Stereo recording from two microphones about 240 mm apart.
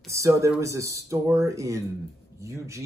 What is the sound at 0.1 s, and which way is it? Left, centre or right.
Speech, centre.